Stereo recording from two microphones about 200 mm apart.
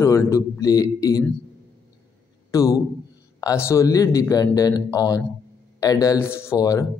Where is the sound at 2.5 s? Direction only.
15° left (ahead or behind).